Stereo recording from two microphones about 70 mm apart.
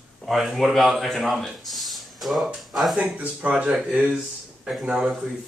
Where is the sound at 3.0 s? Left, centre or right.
Right.